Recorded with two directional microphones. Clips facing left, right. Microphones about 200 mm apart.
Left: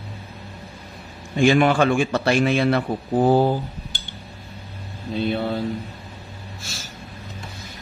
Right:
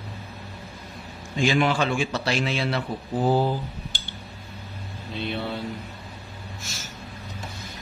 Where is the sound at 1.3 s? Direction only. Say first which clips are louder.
Left 6 dB; 55° left (ahead or behind).